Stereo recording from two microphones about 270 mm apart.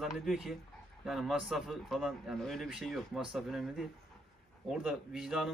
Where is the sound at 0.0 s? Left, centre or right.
Centre.